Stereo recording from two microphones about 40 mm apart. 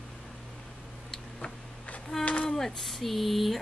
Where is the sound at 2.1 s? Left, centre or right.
Centre.